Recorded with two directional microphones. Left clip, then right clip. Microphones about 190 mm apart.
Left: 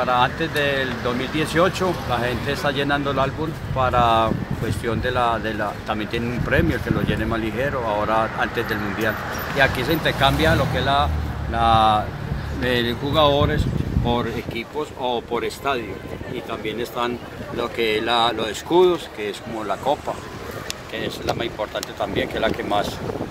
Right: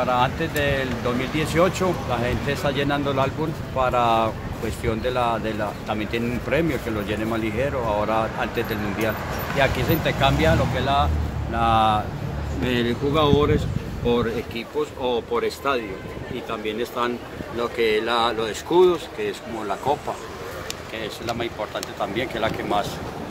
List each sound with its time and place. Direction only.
0.0 s speech: centre (ahead or behind)
9.6 s speech: 10° left (ahead or behind)
13.1 s speech: 35° left (ahead or behind)
15.0 s speech: 40° left (ahead or behind)
21.4 s speech: 25° left (ahead or behind)